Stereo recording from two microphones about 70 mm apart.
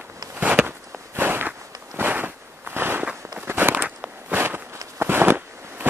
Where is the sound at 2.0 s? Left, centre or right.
Right.